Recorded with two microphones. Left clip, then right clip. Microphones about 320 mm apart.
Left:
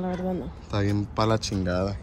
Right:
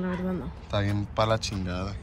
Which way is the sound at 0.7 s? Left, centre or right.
Centre.